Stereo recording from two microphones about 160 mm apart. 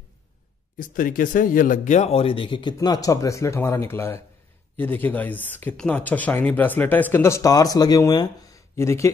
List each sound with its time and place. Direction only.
0.7 s speech: 60° left (ahead or behind); by 9.1 s 15° left (ahead or behind)